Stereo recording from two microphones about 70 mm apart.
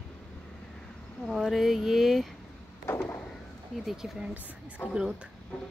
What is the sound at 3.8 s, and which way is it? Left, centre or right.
Speech, centre.